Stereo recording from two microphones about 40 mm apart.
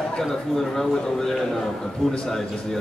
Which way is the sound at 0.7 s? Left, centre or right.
Centre.